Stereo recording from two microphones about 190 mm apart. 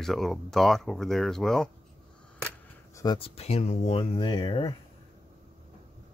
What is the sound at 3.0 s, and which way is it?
Speech, 25° left (ahead or behind).